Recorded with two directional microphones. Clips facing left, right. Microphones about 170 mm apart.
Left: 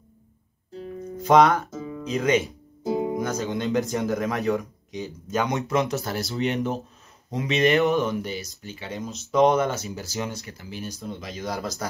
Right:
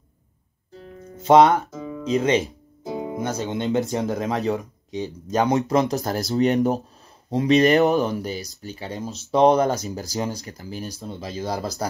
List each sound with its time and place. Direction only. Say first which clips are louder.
1.1 s speech: right 3 dB; 25° right (ahead or behind)